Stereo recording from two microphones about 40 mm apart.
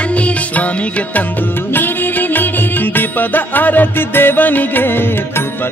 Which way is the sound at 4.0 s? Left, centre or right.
Left.